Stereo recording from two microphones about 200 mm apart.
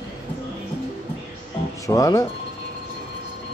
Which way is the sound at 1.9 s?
15° left (ahead or behind).